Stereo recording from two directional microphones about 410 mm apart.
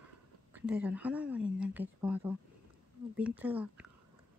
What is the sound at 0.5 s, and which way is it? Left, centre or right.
Speech, centre.